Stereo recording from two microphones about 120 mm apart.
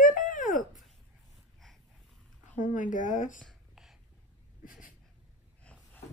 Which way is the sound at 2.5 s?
90° left.